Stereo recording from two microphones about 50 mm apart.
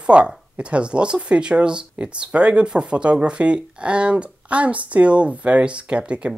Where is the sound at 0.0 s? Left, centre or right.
Right.